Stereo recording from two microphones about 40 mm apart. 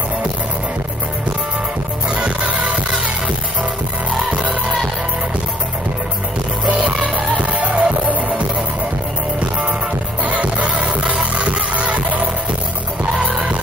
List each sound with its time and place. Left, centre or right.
2.1 s music: right
6.6 s music: right
10.2 s music: right